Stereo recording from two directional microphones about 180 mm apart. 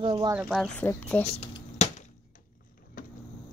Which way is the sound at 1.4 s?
40° left (ahead or behind).